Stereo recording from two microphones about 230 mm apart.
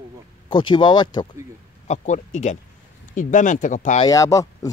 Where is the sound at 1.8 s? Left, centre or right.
Left.